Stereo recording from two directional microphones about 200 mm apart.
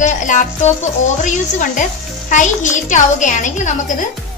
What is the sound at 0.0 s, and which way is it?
A woman's voice, 40° left (ahead or behind).